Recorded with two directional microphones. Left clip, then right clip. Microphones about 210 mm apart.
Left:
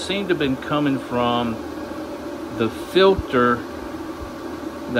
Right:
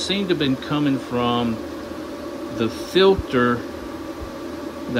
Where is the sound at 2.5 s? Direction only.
15° right (ahead or behind).